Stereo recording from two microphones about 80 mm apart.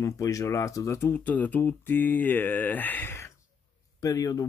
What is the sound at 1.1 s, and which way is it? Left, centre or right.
Speech, left.